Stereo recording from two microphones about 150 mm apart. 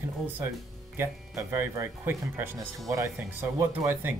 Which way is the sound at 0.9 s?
15° right (ahead or behind).